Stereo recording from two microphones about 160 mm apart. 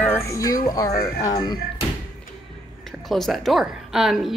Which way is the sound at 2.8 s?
Centre (ahead or behind).